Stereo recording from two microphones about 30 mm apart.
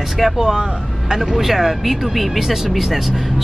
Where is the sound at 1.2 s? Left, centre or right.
Centre.